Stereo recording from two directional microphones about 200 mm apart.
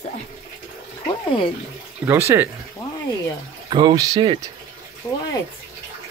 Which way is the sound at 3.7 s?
20° right (ahead or behind).